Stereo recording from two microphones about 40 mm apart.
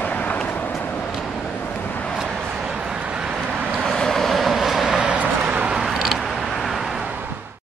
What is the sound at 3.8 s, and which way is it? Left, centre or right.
Vehicle, centre.